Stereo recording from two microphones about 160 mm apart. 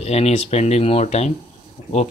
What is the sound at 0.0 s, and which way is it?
Speech, 40° left (ahead or behind).